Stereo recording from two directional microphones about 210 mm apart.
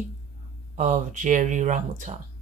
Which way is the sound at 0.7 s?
40° right (ahead or behind).